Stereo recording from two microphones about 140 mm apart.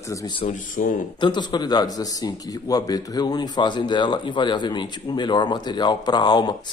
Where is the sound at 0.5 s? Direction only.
60° left (ahead or behind).